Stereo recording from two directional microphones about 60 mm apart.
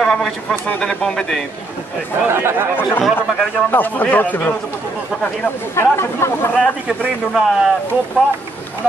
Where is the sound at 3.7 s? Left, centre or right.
Left.